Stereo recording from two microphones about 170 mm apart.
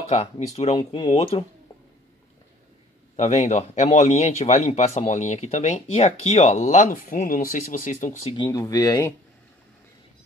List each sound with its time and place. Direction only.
0.1 s speech: 40° left (ahead or behind)
3.2 s speech: 40° left (ahead or behind)
8.5 s speech: 20° left (ahead or behind)